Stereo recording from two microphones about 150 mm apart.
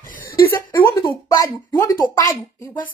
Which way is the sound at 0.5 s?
15° left (ahead or behind).